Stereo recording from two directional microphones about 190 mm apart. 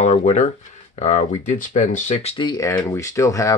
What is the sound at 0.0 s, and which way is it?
Speech, 35° left (ahead or behind).